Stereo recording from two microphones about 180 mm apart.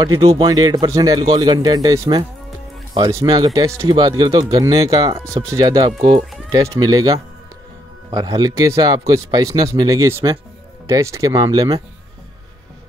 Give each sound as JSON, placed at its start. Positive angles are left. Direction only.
{"t": 0.0, "sound": "speech", "side_deg": -25}